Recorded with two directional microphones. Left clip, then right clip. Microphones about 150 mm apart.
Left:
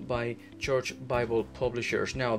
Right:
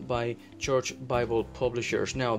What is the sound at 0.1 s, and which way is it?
Speech, 25° right (ahead or behind).